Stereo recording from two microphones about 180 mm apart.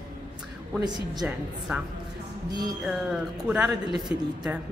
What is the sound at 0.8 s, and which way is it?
Speech, 25° right (ahead or behind).